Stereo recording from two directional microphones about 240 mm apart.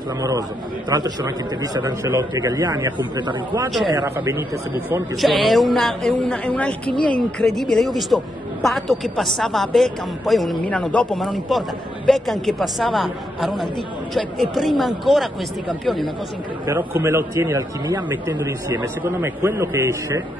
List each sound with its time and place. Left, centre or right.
0.8 s a man's voice: centre
5.2 s a woman's voice: centre
16.6 s a man's voice: centre